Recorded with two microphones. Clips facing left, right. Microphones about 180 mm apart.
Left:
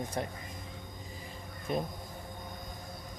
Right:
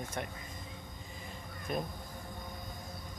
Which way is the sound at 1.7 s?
25° left (ahead or behind).